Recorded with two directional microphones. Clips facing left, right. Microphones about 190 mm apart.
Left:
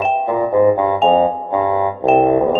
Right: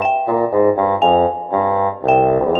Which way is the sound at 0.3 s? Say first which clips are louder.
Left 1 dB; 15° left (ahead or behind).